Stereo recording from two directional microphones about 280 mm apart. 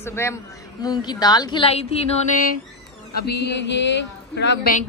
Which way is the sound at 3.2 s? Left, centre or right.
Left.